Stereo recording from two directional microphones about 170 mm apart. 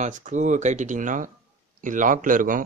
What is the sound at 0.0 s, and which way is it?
Speech, 45° right (ahead or behind).